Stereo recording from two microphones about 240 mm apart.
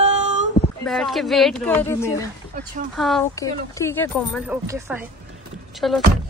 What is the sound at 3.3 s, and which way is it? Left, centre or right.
Speech, centre.